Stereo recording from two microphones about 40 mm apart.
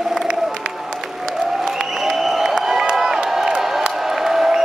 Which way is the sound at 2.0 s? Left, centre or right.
Centre.